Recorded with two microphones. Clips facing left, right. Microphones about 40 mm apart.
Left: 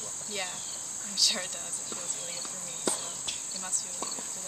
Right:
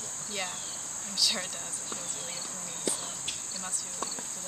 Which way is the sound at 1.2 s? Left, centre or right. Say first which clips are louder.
Even; centre.